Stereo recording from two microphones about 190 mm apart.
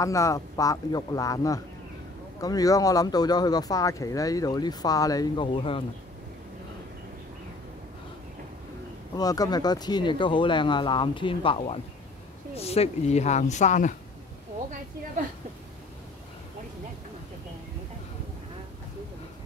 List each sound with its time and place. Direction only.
0.0 s speech: 15° left (ahead or behind)
9.1 s a woman's voice: 20° left (ahead or behind); by 13.9 s 40° left (ahead or behind)